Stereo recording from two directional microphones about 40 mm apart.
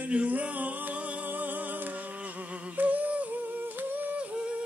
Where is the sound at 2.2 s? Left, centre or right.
Right.